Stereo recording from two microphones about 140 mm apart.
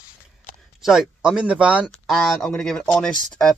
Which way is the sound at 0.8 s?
5° right (ahead or behind).